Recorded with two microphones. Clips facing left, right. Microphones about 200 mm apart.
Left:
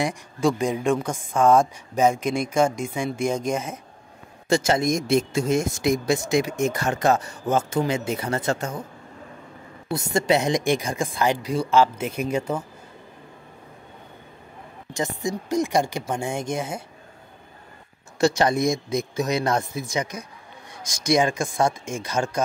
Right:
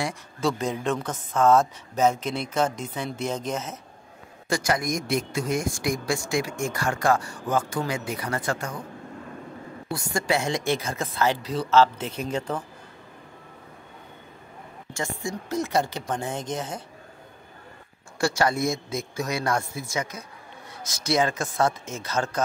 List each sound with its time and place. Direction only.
0.0 s a woman's voice: 15° left (ahead or behind)
4.5 s speech: 25° left (ahead or behind)
9.9 s a woman's voice: 20° left (ahead or behind)
15.0 s a woman's voice: 20° left (ahead or behind)
18.2 s a woman's voice: 20° left (ahead or behind)